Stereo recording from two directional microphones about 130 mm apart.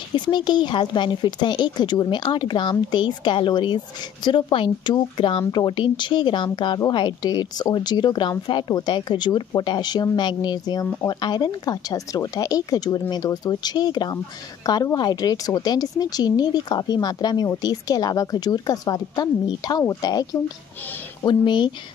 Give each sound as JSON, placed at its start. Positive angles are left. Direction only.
{"t": 0.1, "sound": "a woman's voice", "side_deg": 35}
{"t": 21.3, "sound": "speech", "side_deg": 35}